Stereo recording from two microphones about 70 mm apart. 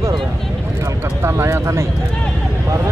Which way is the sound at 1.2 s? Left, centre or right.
Right.